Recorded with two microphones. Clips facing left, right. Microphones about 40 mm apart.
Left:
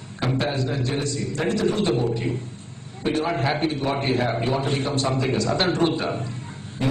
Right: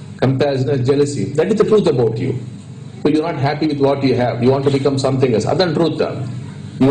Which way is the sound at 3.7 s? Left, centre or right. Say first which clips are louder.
Right 10 dB; right.